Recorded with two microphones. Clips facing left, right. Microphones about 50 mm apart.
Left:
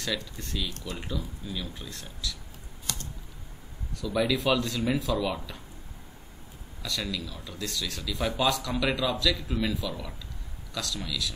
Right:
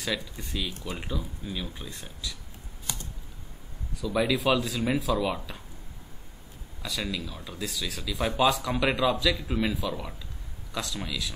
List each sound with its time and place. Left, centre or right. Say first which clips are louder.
0.0 s speech: right 1 dB; centre
2.9 s typing: even; centre
4.0 s speech: right 1 dB; centre
6.8 s a man's voice: right 1 dB; centre